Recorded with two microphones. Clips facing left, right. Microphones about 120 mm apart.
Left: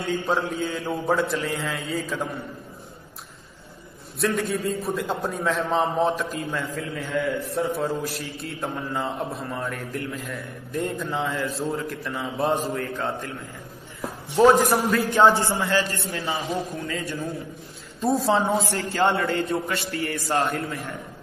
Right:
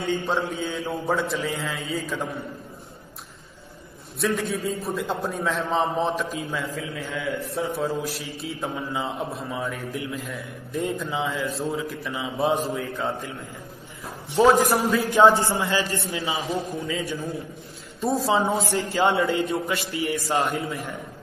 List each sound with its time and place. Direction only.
0.0 s a man's voice: centre (ahead or behind)
4.2 s a man's voice: centre (ahead or behind)
14.3 s a man's voice: centre (ahead or behind)
15.2 s a man's voice: 20° right (ahead or behind)
16.7 s a man's voice: centre (ahead or behind)
19.9 s a man's voice: 60° left (ahead or behind)
20.2 s a man's voice: 10° right (ahead or behind)